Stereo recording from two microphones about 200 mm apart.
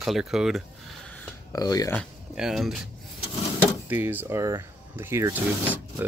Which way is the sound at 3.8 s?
10° right (ahead or behind).